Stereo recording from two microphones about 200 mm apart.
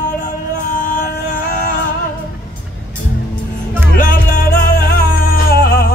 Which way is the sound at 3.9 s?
45° left (ahead or behind).